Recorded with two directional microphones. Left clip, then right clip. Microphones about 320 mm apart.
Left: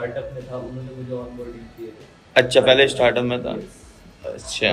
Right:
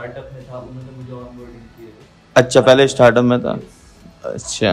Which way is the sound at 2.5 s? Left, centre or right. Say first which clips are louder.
Right 3 dB; right.